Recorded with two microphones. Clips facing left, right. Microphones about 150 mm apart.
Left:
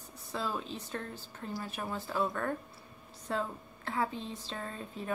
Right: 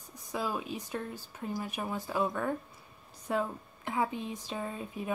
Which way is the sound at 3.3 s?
15° right (ahead or behind).